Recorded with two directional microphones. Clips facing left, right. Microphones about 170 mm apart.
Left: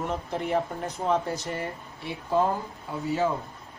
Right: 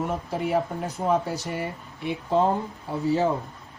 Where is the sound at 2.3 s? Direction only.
25° right (ahead or behind).